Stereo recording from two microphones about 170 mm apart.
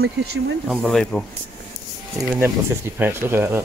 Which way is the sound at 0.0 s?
70° right (ahead or behind).